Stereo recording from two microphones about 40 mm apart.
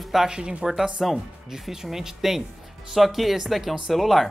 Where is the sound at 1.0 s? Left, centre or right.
Centre.